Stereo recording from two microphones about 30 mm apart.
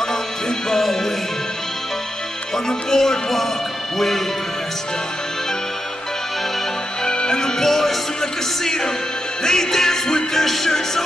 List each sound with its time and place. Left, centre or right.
0.1 s music: centre
2.5 s music: centre
7.1 s music: left
7.6 s music: centre
8.2 s music: centre
10.4 s music: centre